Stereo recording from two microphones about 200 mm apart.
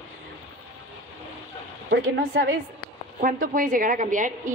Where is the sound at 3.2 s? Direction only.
45° right (ahead or behind).